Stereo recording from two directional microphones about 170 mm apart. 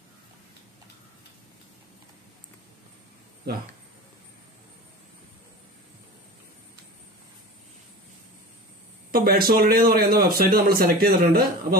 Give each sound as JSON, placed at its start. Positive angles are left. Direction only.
{"t": 9.1, "sound": "a man's voice", "side_deg": -60}